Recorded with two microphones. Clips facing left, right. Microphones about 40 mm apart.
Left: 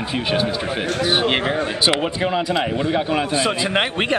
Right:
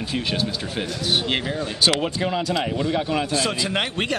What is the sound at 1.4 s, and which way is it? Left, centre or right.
Speech, left.